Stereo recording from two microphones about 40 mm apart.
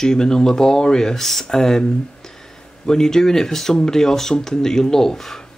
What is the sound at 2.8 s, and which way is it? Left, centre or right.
Speech, centre.